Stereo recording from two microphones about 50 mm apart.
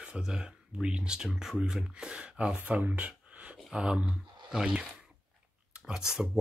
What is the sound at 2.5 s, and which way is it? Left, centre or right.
Speech, right.